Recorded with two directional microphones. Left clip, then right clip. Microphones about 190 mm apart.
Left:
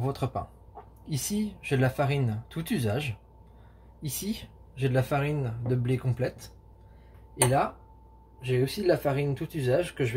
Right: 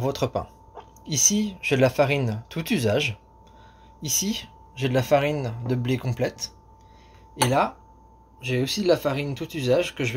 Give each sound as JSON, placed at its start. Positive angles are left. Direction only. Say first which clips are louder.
{"t": 0.0, "sound": "speech", "louder": "right 6 dB", "side_deg": -35}
{"t": 8.4, "sound": "speech", "louder": "right 2 dB", "side_deg": -35}